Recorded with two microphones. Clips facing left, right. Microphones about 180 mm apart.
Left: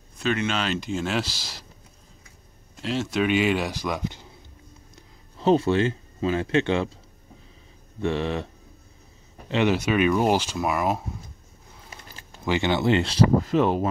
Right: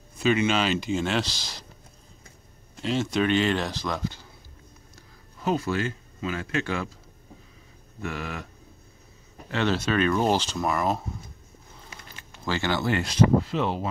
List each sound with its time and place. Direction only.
0.2 s speech: 5° right (ahead or behind)
2.7 s speech: centre (ahead or behind); by 6.9 s 25° left (ahead or behind)
8.0 s speech: 30° left (ahead or behind)
9.5 s speech: 15° left (ahead or behind)
12.1 s a sound: 35° left (ahead or behind)
12.4 s speech: 20° left (ahead or behind)
13.4 s speech: 50° left (ahead or behind)